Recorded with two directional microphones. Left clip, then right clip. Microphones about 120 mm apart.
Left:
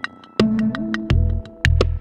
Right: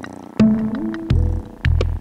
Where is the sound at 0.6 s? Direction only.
Centre (ahead or behind).